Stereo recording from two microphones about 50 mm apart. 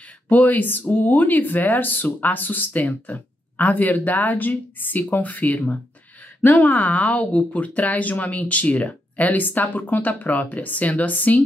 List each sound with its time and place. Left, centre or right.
0.3 s speech: left